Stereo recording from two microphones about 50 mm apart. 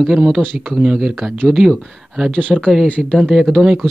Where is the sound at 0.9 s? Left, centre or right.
Centre.